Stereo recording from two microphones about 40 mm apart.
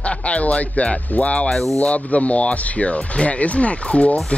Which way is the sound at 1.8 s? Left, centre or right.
Left.